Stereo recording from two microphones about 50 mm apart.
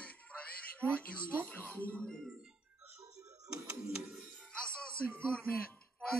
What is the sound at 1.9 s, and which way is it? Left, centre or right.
Speech, centre.